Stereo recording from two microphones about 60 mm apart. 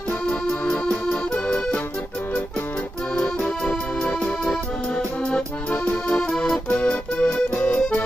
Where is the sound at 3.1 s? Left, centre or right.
Centre.